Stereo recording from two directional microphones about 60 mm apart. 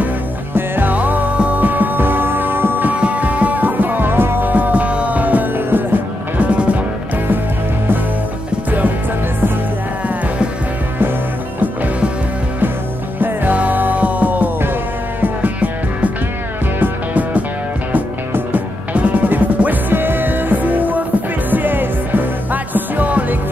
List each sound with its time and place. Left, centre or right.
0.6 s music: right
11.6 s music: right
13.2 s music: right